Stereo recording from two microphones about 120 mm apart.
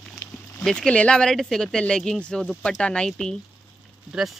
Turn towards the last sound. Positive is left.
turn(degrees=-5)  # may be behind; listen again after turning